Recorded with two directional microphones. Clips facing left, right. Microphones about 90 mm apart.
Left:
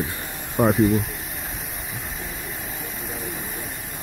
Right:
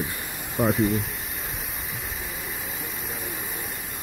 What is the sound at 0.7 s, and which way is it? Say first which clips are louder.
Speech: left 5 dB; centre (ahead or behind).